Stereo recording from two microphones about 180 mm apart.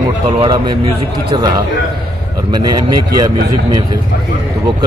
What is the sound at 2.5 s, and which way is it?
Speech, 25° right (ahead or behind).